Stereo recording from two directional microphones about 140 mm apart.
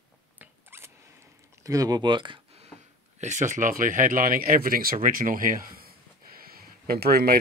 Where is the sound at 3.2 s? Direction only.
60° right (ahead or behind); by 7.4 s 90° right.